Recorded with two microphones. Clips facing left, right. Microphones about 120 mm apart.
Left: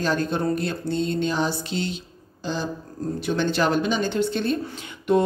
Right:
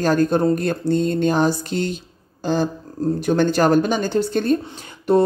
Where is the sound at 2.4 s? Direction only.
50° right (ahead or behind).